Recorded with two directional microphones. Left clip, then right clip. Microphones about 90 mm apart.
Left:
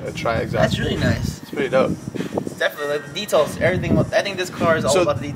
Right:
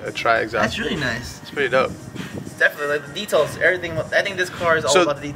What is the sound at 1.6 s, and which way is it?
Speech, 30° right (ahead or behind).